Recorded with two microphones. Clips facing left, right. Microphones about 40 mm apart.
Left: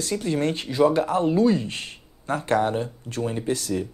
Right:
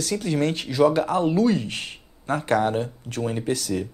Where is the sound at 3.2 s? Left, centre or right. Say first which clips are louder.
Right 1 dB; right.